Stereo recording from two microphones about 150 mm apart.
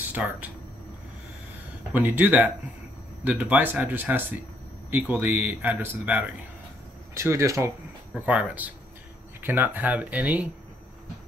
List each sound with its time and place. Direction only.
0.0 s speech: 10° right (ahead or behind)
1.9 s speech: 10° right (ahead or behind)
7.2 s speech: 20° right (ahead or behind)
8.1 s speech: 10° right (ahead or behind)